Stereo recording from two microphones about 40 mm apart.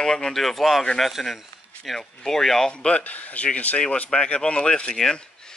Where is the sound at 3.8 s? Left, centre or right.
Left.